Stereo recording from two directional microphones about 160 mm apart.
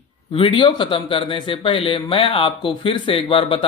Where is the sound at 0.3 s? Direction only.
35° left (ahead or behind).